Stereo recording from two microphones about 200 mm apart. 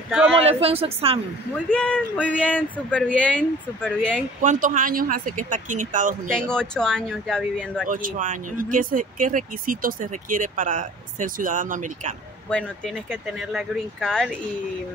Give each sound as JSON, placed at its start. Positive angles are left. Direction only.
{"t": 0.4, "sound": "a woman's voice", "side_deg": -30}
{"t": 1.7, "sound": "speech", "side_deg": 5}
{"t": 4.4, "sound": "speech", "side_deg": -40}
{"t": 6.3, "sound": "speech", "side_deg": 5}
{"t": 7.9, "sound": "speech", "side_deg": -40}
{"t": 12.4, "sound": "speech", "side_deg": 5}